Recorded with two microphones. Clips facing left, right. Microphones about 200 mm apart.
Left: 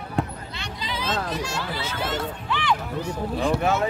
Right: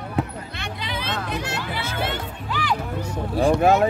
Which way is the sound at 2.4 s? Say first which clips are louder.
Even; 40° right (ahead or behind).